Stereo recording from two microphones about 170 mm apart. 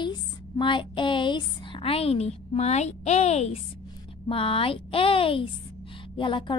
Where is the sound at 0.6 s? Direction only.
30° left (ahead or behind).